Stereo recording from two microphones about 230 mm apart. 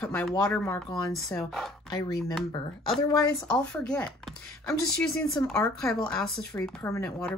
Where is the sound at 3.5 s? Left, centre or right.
Centre.